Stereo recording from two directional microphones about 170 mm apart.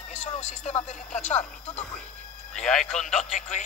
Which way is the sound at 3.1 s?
50° left (ahead or behind).